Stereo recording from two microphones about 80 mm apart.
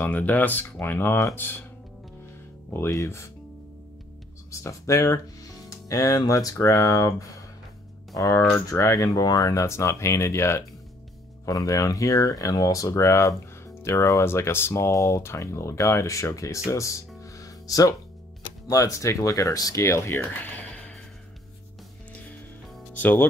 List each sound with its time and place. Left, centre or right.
0.0 s speech: left
2.9 s speech: left
4.5 s speech: left
11.4 s speech: left
17.2 s music: left
18.7 s speech: left
19.8 s speech: left
20.2 s a sound: centre
22.9 s music: left